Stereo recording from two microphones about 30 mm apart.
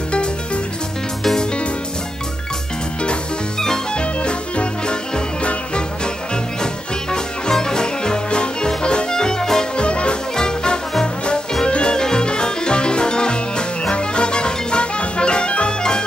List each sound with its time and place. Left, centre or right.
3.5 s music: left
3.9 s music: left
6.6 s music: left
9.8 s music: left
10.3 s music: left